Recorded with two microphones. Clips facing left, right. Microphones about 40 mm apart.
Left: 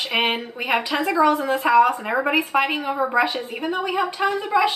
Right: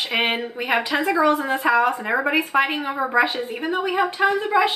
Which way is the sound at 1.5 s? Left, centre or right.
Centre.